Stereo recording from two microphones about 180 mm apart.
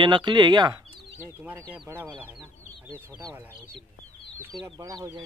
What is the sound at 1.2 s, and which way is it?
Speech, 10° right (ahead or behind).